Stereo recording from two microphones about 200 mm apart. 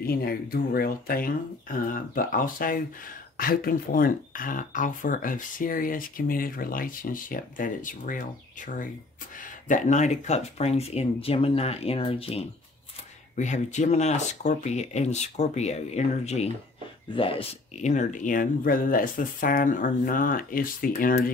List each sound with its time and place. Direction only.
0.0 s speech: 50° left (ahead or behind)